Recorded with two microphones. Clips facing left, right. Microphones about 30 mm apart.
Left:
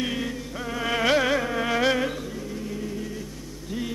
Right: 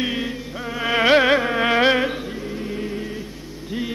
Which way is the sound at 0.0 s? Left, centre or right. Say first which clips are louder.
Right 4 dB; right.